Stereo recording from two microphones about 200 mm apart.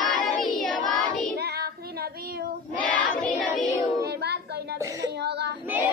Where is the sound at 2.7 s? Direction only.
5° left (ahead or behind).